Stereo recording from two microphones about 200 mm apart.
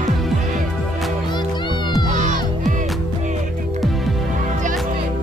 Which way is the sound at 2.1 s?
40° right (ahead or behind).